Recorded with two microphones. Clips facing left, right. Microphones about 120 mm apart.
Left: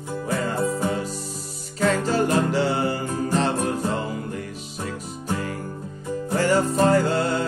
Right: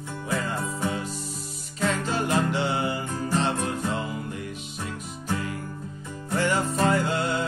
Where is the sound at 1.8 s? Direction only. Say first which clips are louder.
Left 5 dB; 40° left (ahead or behind).